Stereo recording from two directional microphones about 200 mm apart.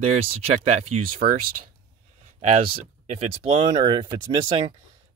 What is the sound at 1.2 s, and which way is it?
Speech, 45° right (ahead or behind).